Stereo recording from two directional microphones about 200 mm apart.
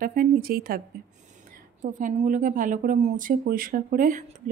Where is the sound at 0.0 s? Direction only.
45° right (ahead or behind).